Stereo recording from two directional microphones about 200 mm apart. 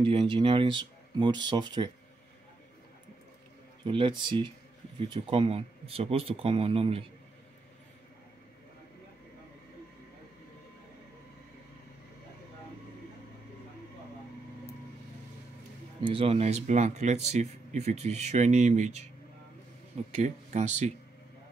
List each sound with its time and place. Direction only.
0.0 s speech: 25° right (ahead or behind)
3.8 s speech: 25° right (ahead or behind)
16.1 s speech: 30° right (ahead or behind)
20.1 s speech: 35° right (ahead or behind)